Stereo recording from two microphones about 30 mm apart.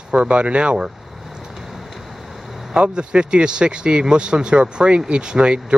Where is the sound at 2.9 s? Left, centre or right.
Right.